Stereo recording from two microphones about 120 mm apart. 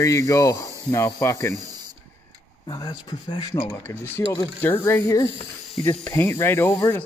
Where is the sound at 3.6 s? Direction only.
20° left (ahead or behind).